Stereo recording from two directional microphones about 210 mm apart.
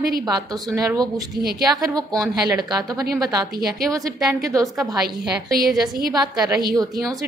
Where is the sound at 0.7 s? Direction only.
15° right (ahead or behind).